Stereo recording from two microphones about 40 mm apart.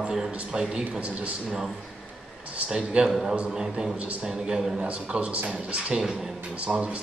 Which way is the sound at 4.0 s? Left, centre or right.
Right.